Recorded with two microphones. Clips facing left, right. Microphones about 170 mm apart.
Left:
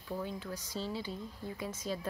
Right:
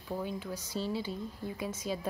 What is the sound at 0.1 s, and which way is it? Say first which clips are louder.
A woman's voice: right 2 dB; 15° right (ahead or behind).